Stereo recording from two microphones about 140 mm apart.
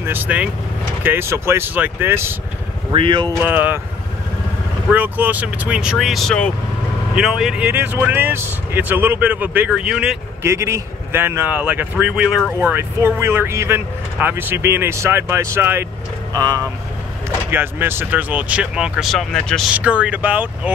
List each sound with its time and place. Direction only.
0.0 s speech: 15° right (ahead or behind)
2.9 s speech: 35° right (ahead or behind)
3.4 s speech: 10° right (ahead or behind)
4.9 s speech: 10° right (ahead or behind)
10.4 s speech: 20° right (ahead or behind); by 12.5 s 5° right (ahead or behind)
12.6 s speech: 15° right (ahead or behind)
16.3 s speech: 30° right (ahead or behind)
17.5 s speech: 15° right (ahead or behind); by 19.7 s 5° left (ahead or behind)
19.7 s speech: 10° right (ahead or behind)